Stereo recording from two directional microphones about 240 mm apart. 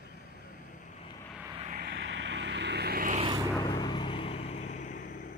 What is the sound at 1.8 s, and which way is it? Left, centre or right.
Vehicle, right.